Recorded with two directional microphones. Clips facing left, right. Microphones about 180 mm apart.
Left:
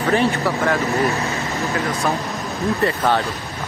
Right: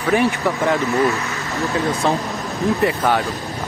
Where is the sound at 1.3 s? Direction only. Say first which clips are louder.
Left 2 dB; 20° left (ahead or behind).